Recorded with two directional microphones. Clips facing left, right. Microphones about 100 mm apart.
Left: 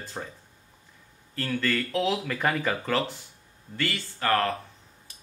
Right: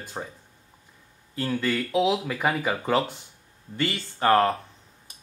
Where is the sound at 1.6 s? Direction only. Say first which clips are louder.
Right 3 dB; 10° right (ahead or behind).